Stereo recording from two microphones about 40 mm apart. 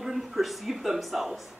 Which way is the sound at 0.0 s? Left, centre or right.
Centre.